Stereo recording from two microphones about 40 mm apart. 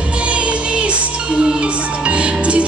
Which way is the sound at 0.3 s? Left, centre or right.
Right.